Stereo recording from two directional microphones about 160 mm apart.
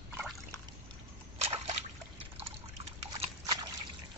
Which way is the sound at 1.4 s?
40° right (ahead or behind).